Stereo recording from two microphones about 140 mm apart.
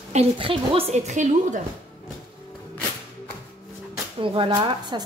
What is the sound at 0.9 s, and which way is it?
Speech, 55° right (ahead or behind).